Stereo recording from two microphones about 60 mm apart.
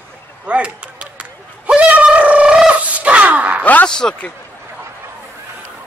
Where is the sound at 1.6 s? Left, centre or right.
Centre.